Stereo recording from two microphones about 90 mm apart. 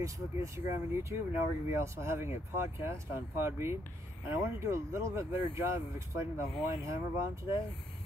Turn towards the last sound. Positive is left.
turn(degrees=-30)  # may be behind; listen again after turning